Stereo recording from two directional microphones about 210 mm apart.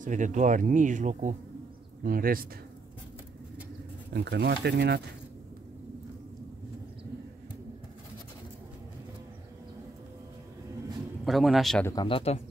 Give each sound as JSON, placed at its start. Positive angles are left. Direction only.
{"t": 0.0, "sound": "speech", "side_deg": -35}
{"t": 4.1, "sound": "speech", "side_deg": -55}
{"t": 11.2, "sound": "a man's voice", "side_deg": 0}
{"t": 11.9, "sound": "speech", "side_deg": 25}